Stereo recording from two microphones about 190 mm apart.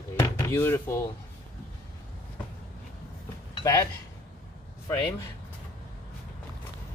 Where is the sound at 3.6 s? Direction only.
15° left (ahead or behind).